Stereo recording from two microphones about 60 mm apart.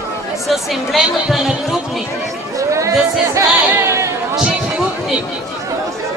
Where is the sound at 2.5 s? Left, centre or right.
Right.